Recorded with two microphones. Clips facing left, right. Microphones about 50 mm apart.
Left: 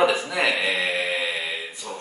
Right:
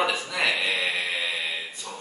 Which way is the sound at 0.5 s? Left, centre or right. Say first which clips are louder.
Left 2 dB; centre.